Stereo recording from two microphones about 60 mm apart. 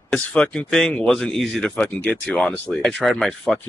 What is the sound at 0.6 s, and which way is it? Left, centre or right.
Speech, centre.